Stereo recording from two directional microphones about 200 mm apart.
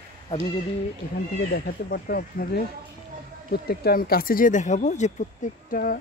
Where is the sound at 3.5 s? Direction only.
50° left (ahead or behind).